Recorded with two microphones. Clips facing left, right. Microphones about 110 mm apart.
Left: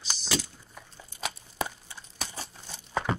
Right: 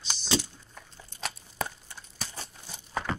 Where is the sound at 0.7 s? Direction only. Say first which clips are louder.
Left 2 dB; 5° left (ahead or behind).